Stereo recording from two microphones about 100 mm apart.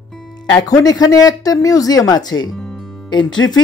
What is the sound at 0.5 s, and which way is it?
Speech, 40° left (ahead or behind).